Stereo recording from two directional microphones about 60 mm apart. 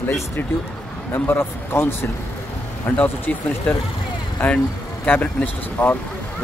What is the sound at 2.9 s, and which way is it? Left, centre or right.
Speech, left.